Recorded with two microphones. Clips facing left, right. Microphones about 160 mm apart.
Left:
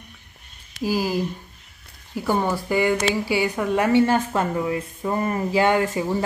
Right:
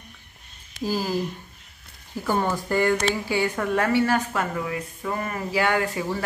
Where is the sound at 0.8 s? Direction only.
10° left (ahead or behind).